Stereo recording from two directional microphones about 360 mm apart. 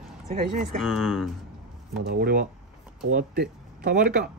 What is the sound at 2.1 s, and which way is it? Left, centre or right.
Speech, right.